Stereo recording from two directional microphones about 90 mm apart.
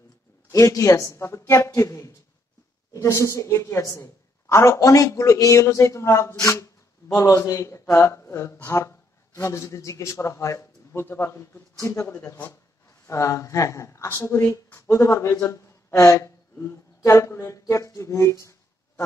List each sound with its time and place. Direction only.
0.5 s a woman's voice: 35° left (ahead or behind)
13.0 s a woman's voice: 35° left (ahead or behind)